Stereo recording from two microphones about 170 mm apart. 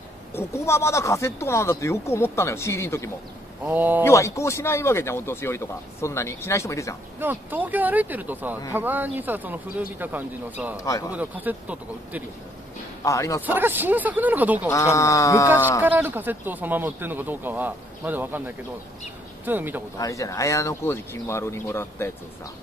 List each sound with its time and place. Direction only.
0.3 s speech: 15° left (ahead or behind)
3.6 s a man's voice: 10° right (ahead or behind)
4.0 s speech: 15° left (ahead or behind)
7.2 s a man's voice: 10° right (ahead or behind)
10.8 s a man's voice: 20° left (ahead or behind)
11.1 s a man's voice: 10° right (ahead or behind)
13.0 s a man's voice: 20° left (ahead or behind)
13.5 s a man's voice: 10° right (ahead or behind)
14.7 s speech: 20° left (ahead or behind)
15.8 s a man's voice: 10° right (ahead or behind)
19.4 s a man's voice: 10° right (ahead or behind)
20.0 s speech: 20° left (ahead or behind)